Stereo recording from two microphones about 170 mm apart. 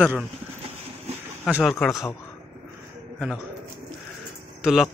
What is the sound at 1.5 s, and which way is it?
Speech, centre (ahead or behind).